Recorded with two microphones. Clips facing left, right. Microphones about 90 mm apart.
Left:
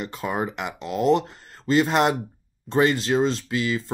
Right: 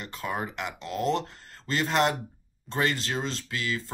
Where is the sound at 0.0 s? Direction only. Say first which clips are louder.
Left 6 dB; 20° left (ahead or behind).